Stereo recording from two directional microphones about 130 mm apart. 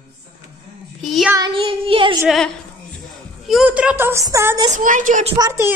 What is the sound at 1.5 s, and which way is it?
Child singing, 40° right (ahead or behind).